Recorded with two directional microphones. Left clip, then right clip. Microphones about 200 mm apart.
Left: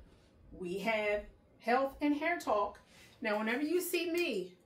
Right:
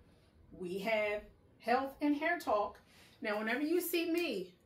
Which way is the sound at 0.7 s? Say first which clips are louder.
Left 1 dB; 10° left (ahead or behind).